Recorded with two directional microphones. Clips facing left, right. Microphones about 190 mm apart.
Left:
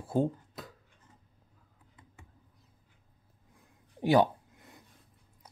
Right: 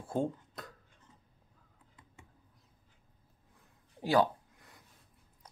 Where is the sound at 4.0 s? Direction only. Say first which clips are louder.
Left 3 dB; 20° left (ahead or behind).